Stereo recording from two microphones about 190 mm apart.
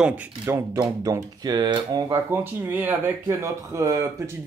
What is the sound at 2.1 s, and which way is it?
Speech, 10° right (ahead or behind).